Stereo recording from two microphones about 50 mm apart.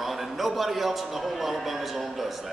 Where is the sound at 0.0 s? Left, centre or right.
Centre.